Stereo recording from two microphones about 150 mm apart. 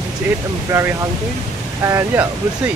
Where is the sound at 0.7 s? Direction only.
20° right (ahead or behind).